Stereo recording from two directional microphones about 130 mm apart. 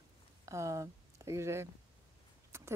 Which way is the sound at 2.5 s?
20° right (ahead or behind).